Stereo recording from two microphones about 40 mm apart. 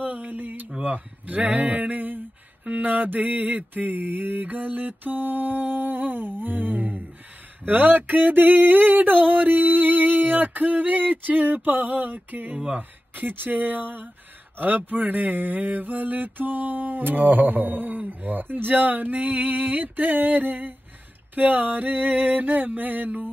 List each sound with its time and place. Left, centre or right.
0.0 s a sound: right
0.8 s mantra: right
12.5 s speech: right
13.1 s mantra: right